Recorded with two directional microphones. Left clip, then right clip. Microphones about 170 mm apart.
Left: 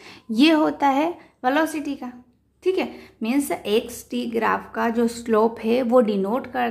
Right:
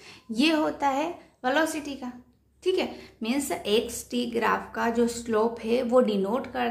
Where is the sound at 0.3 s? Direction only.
25° left (ahead or behind).